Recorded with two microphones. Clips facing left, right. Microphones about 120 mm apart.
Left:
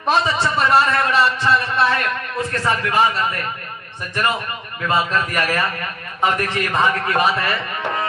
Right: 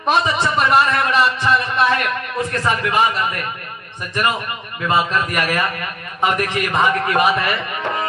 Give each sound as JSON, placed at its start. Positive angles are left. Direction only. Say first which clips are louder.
{"t": 0.0, "sound": "a man's voice", "louder": "right 1 dB", "side_deg": -15}